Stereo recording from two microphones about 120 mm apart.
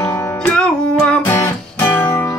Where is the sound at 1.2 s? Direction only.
20° left (ahead or behind).